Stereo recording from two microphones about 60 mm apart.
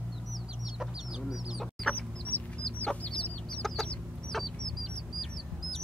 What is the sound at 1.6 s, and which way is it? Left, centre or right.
Chicken, centre.